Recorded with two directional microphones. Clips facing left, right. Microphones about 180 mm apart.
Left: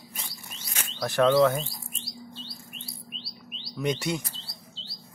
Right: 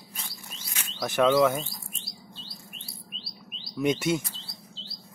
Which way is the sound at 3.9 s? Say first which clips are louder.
Right 3 dB; 5° right (ahead or behind).